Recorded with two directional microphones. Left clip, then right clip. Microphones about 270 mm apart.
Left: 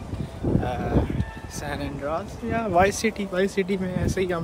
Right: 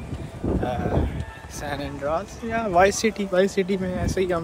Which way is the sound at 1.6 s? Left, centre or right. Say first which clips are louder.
Right 2 dB; centre.